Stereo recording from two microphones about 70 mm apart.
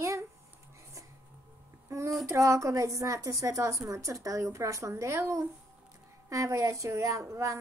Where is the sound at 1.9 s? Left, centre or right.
Right.